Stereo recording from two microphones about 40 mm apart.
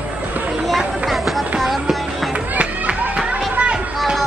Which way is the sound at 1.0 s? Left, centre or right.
Centre.